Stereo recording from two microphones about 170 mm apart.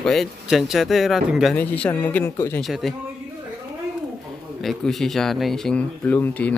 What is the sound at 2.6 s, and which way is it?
Speech, centre (ahead or behind).